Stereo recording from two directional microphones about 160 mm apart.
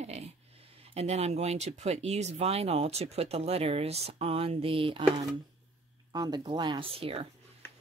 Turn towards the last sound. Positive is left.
turn(degrees=-35)  # may be behind; listen again after turning